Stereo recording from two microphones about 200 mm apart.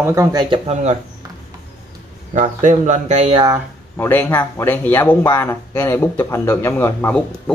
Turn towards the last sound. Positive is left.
turn(degrees=5)  # may be behind; listen again after turning